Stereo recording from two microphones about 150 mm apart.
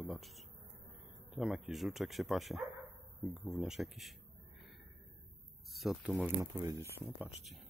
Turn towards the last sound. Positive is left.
turn(degrees=-5)  # may be behind; listen again after turning